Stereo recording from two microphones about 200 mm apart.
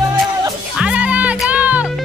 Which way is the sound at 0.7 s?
5° right (ahead or behind).